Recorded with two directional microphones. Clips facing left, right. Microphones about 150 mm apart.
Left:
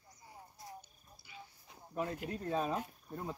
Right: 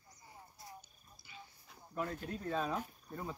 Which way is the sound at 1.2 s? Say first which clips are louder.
Left 2 dB; 10° left (ahead or behind).